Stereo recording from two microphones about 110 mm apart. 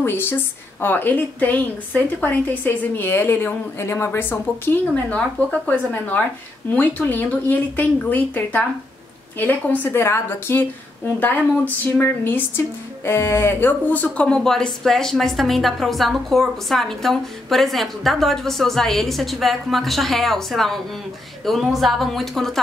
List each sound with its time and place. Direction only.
0.0 s a woman's voice: 20° left (ahead or behind); by 22.6 s centre (ahead or behind)